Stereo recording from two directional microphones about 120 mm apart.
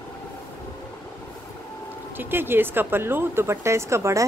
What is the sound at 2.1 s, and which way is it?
Speech, 20° right (ahead or behind).